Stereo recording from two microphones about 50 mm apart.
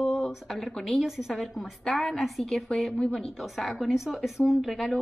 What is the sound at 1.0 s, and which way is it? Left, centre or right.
A woman's voice, centre.